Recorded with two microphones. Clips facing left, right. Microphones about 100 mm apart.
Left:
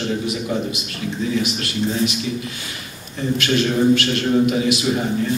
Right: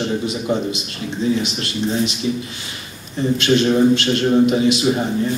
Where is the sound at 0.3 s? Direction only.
25° right (ahead or behind).